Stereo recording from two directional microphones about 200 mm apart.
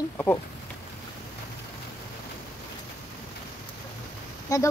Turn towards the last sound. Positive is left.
turn(degrees=15)  # may be behind; listen again after turning